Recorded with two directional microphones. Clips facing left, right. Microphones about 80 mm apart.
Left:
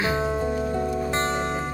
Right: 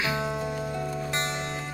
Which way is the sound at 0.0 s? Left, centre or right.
Left.